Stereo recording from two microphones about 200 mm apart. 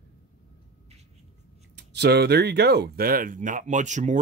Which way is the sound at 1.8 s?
55° right (ahead or behind).